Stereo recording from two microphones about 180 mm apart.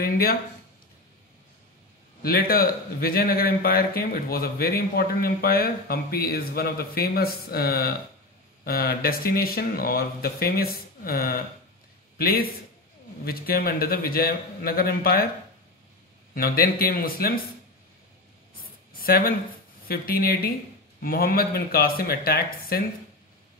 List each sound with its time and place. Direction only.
0.0 s a sound: 55° left (ahead or behind)
2.2 s a man's voice: 55° left (ahead or behind)
16.3 s a man's voice: 55° left (ahead or behind)
18.9 s a man's voice: 55° left (ahead or behind)